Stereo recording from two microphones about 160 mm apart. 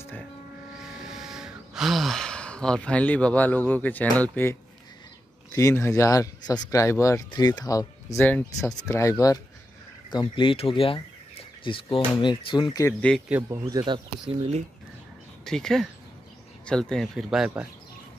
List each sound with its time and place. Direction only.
0.7 s gasp: 5° right (ahead or behind)
5.5 s speech: 20° left (ahead or behind)
8.3 s speech: 10° left (ahead or behind)
10.1 s speech: 30° left (ahead or behind)
13.3 s speech: 15° right (ahead or behind)
15.4 s speech: 5° left (ahead or behind)